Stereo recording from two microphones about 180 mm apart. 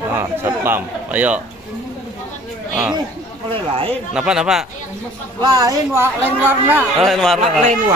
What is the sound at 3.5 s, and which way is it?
Speech, 30° right (ahead or behind).